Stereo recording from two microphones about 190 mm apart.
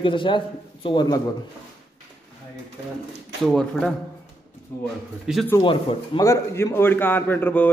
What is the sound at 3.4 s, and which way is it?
Speech, centre (ahead or behind).